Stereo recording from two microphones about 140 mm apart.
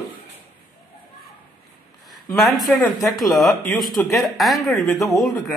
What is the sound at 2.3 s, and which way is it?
A man's voice, centre (ahead or behind).